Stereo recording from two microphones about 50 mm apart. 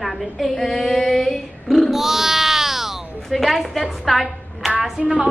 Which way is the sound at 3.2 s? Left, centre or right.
Centre.